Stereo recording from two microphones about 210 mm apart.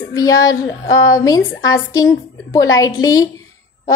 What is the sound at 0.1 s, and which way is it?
A woman's voice, 15° left (ahead or behind).